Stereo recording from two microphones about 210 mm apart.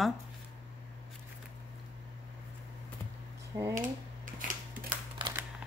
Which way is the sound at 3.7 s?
40° right (ahead or behind).